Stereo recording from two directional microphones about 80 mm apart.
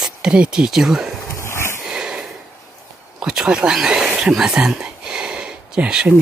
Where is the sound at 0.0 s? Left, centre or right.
Centre.